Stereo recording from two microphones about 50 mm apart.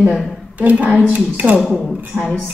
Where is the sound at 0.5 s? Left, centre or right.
Right.